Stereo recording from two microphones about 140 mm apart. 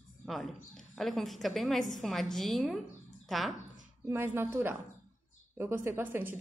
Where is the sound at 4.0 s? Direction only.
15° right (ahead or behind).